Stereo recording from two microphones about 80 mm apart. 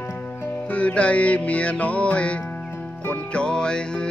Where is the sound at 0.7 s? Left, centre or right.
Centre.